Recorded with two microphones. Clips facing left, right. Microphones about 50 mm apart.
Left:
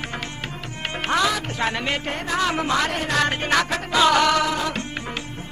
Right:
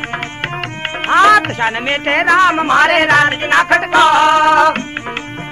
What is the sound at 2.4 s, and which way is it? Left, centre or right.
Music, right.